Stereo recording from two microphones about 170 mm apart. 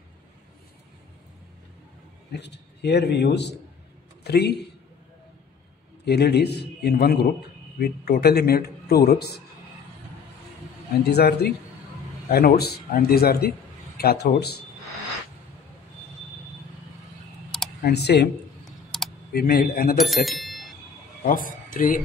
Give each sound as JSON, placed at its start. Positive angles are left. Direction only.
{"t": 2.3, "sound": "a man's voice", "side_deg": 85}
{"t": 6.0, "sound": "speech", "side_deg": 75}
{"t": 11.1, "sound": "a man's voice", "side_deg": 75}
{"t": 17.8, "sound": "speech", "side_deg": 75}
{"t": 18.9, "sound": "typing", "side_deg": 0}
{"t": 19.3, "sound": "a man's voice", "side_deg": 60}
{"t": 20.0, "sound": "bicycle bell", "side_deg": 0}
{"t": 21.2, "sound": "speech", "side_deg": 55}